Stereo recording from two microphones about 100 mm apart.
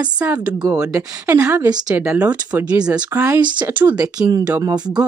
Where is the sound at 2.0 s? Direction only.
15° right (ahead or behind).